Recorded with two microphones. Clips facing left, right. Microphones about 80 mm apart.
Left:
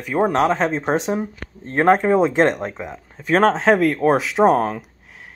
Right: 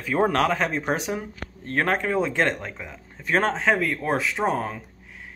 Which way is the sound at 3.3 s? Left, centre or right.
Left.